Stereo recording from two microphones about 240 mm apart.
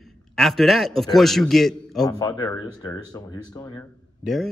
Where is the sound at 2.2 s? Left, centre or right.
Centre.